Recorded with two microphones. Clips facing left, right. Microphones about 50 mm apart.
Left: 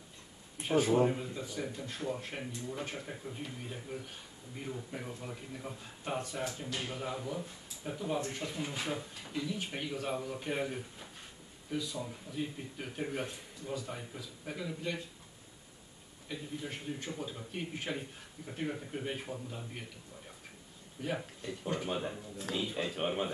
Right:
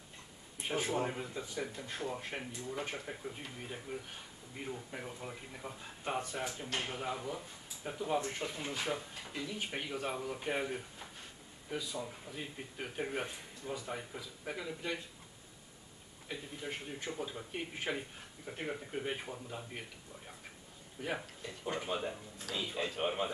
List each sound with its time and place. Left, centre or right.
1.0 s speech: centre
7.1 s speech: centre
16.3 s speech: centre
21.0 s speech: centre
22.6 s speech: centre